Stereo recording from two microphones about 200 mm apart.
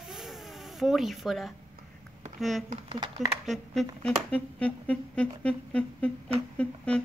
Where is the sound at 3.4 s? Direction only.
Centre (ahead or behind).